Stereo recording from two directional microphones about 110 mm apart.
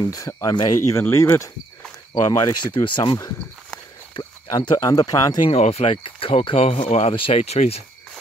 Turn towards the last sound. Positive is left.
turn(degrees=75)  # may be behind; listen again after turning